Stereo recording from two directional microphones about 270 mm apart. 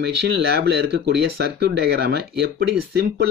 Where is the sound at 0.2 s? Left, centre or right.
Right.